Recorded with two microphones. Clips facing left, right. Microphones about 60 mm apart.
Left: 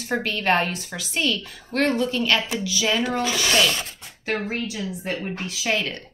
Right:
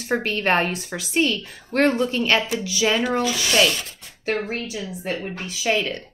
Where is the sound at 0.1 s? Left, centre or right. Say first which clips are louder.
Right 1 dB; right.